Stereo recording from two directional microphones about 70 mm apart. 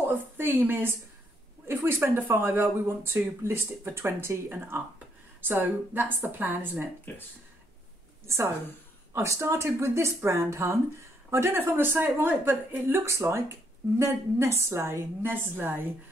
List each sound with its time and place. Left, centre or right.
0.0 s a woman's voice: right
9.1 s speech: right